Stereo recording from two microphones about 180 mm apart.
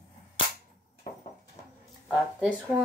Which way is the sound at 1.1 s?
50° left (ahead or behind).